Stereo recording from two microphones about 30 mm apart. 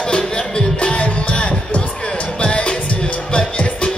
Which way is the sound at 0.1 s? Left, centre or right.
Left.